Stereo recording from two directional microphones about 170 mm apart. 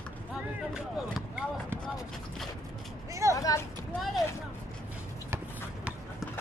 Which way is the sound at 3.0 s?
20° right (ahead or behind).